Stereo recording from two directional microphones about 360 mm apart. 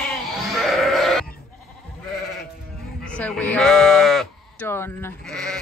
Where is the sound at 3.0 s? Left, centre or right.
Centre.